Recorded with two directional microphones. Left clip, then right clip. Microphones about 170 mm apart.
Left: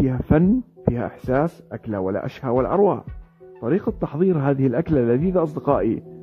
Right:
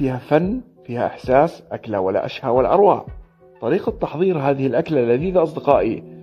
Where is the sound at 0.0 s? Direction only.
35° left (ahead or behind).